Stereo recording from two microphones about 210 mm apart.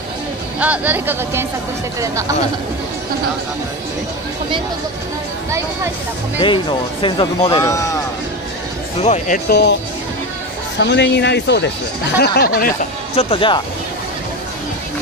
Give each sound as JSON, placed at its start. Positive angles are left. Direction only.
{"t": 0.6, "sound": "speech", "side_deg": -5}
{"t": 6.4, "sound": "speech", "side_deg": 25}
{"t": 9.0, "sound": "speech", "side_deg": 30}
{"t": 9.5, "sound": "speech", "side_deg": 50}
{"t": 10.8, "sound": "speech", "side_deg": 55}
{"t": 13.1, "sound": "speech", "side_deg": 25}